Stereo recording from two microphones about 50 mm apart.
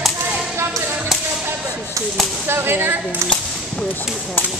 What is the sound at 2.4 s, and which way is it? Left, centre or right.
Whip, right.